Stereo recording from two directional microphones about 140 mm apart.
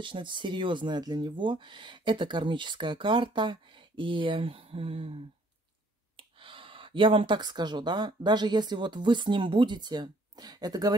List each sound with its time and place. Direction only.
0.0 s speech: 35° right (ahead or behind)